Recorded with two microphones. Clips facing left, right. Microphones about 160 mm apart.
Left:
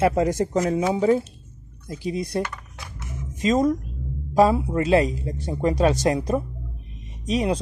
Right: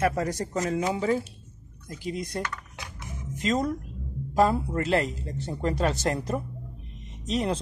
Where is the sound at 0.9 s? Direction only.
5° left (ahead or behind).